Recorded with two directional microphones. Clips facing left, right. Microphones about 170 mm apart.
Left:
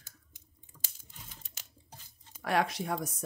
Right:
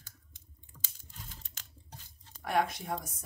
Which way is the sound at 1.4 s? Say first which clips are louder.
Even; 5° left (ahead or behind).